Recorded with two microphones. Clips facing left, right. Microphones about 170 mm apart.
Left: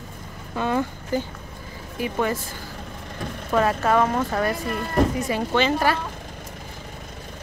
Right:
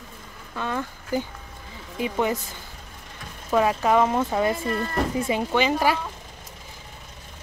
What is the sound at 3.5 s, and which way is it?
Speech, 15° right (ahead or behind).